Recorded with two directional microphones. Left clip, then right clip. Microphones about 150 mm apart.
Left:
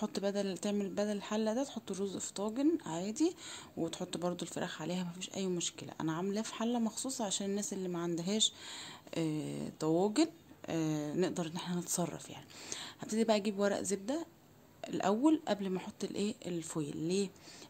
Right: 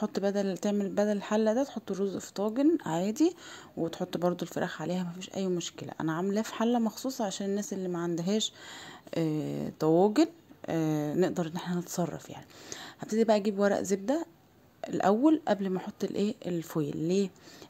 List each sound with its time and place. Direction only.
0.0 s speech: 30° right (ahead or behind)
3.8 s speech: 30° right (ahead or behind)